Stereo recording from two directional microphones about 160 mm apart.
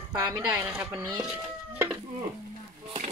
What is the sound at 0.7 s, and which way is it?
Speech, 10° right (ahead or behind).